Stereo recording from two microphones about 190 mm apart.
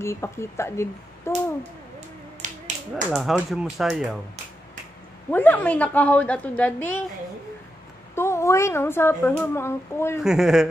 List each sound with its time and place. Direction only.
0.0 s a woman's voice: 15° left (ahead or behind)
2.4 s finger snapping: 40° right (ahead or behind)
2.9 s speech: 5° right (ahead or behind)
5.3 s a woman's voice: 10° left (ahead or behind)
8.1 s a woman's voice: 15° left (ahead or behind)
10.2 s speech: centre (ahead or behind)